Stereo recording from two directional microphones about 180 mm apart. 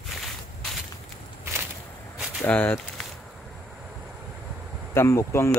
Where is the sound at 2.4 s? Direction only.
10° left (ahead or behind).